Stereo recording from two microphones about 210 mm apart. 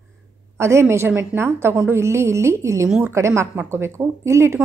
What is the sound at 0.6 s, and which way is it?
A woman's voice, 15° right (ahead or behind).